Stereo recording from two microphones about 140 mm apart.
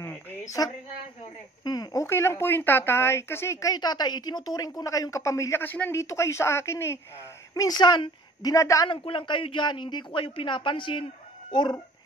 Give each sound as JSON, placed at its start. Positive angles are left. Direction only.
{"t": 0.0, "sound": "a sound", "side_deg": 20}
{"t": 1.6, "sound": "speech", "side_deg": 25}
{"t": 8.8, "sound": "speech", "side_deg": 40}